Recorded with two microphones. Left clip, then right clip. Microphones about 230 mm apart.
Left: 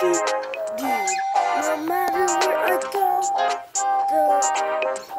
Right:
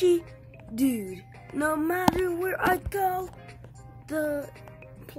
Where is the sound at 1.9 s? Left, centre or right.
Centre.